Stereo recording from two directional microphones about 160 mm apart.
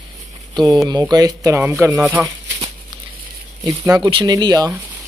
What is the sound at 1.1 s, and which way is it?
Speech, 20° right (ahead or behind).